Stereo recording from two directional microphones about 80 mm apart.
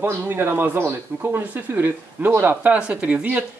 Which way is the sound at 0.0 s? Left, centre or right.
Right.